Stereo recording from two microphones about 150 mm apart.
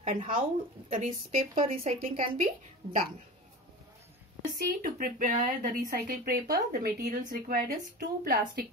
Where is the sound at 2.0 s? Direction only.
70° right (ahead or behind).